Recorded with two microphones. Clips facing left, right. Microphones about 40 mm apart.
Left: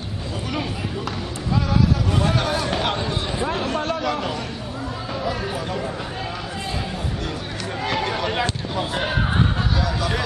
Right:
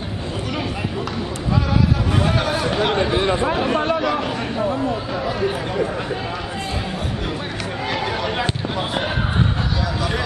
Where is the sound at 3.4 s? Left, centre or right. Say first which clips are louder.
Right 4 dB; centre.